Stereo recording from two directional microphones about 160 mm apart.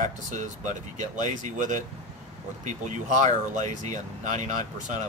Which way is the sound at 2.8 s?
50° right (ahead or behind).